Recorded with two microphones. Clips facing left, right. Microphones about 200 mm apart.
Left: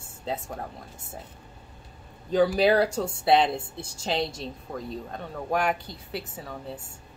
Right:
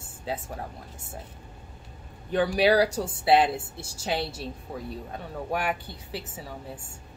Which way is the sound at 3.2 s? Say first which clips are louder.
Right 1 dB; 5° right (ahead or behind).